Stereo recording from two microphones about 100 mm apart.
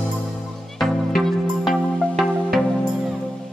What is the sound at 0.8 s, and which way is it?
Music, centre (ahead or behind).